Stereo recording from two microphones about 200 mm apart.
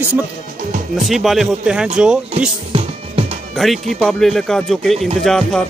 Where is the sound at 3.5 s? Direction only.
Centre (ahead or behind).